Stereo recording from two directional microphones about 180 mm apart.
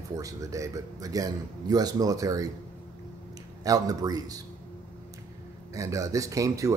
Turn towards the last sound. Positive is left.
turn(degrees=-20)  # may be behind; listen again after turning